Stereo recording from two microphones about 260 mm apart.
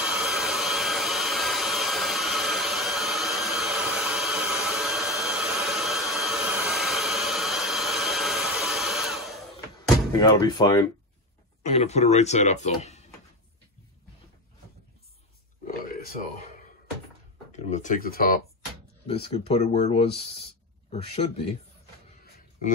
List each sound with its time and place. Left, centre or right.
0.0 s hair dryer: centre
10.1 s speech: centre
11.6 s speech: left
15.6 s a sound: left
17.5 s speech: left
19.0 s speech: left